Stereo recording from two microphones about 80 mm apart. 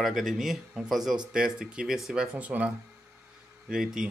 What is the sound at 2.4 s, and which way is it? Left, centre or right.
Speech, centre.